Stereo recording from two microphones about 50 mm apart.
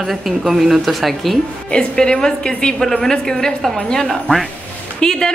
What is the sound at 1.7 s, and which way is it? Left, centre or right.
Speech, centre.